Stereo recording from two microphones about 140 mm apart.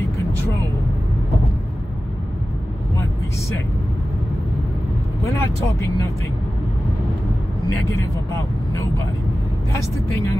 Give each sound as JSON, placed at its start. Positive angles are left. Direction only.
{"t": 5.2, "sound": "vehicle", "side_deg": 20}